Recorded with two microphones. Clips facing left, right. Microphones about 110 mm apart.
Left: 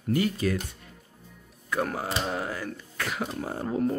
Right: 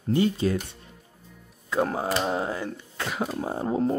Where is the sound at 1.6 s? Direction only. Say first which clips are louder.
Right 4 dB; 25° right (ahead or behind).